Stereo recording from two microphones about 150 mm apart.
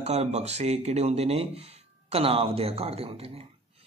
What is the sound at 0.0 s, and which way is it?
Speech, 45° right (ahead or behind).